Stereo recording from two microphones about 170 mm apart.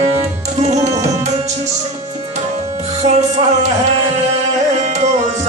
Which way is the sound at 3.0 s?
40° right (ahead or behind).